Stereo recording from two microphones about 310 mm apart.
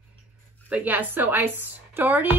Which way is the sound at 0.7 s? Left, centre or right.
Centre.